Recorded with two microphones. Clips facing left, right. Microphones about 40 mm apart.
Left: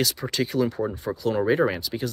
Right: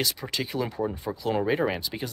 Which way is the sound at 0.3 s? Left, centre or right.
Centre.